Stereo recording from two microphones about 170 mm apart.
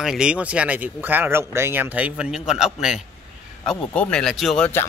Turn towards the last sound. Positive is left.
turn(degrees=0)  # may be behind; listen again after turning